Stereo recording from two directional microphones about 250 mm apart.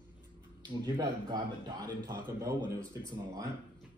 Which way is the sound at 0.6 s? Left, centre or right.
Centre.